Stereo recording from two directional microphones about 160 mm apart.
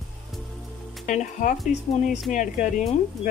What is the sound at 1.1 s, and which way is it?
Speech, 50° left (ahead or behind).